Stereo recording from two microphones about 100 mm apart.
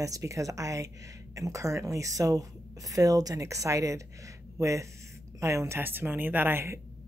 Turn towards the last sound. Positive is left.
turn(degrees=-25)  # may be behind; listen again after turning